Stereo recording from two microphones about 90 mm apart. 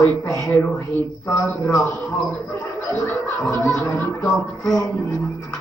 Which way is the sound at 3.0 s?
20° left (ahead or behind).